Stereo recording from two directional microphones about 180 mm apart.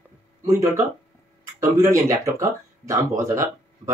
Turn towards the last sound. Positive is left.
turn(degrees=-15)  # may be behind; listen again after turning